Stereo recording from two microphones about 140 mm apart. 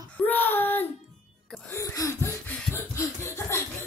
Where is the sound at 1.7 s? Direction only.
20° left (ahead or behind).